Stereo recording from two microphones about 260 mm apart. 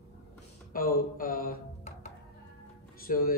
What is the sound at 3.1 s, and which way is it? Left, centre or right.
Mantra, left.